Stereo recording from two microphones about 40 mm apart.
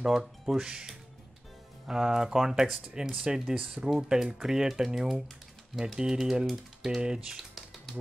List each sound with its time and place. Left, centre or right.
0.0 s speech: centre
7.0 s speech: right
7.3 s typing: centre